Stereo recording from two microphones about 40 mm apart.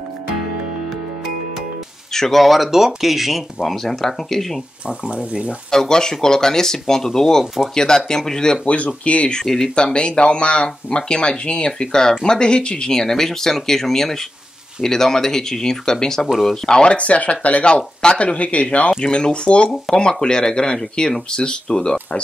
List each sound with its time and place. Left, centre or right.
2.1 s speech: centre
2.4 s speech: centre
5.1 s speech: right
5.7 s speech: centre
8.6 s speech: left
9.3 s speech: centre
9.9 s speech: left
16.9 s speech: left
17.7 s speech: left
18.2 s speech: left
18.9 s speech: centre